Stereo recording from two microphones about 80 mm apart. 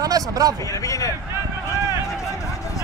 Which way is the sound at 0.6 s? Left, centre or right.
Left.